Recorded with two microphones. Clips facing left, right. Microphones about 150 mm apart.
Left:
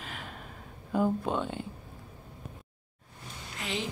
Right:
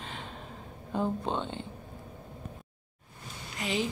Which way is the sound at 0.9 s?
25° right (ahead or behind).